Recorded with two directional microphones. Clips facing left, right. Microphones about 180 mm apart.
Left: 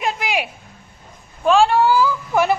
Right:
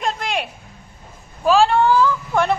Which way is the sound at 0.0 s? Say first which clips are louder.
Left 1 dB; 5° left (ahead or behind).